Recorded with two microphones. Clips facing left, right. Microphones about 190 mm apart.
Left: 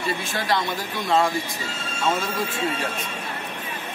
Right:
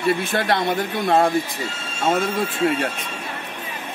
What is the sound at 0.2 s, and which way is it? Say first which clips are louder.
Speech: right 4 dB; 60° right (ahead or behind).